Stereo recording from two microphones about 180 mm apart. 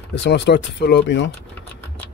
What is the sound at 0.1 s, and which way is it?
Speech, 80° left.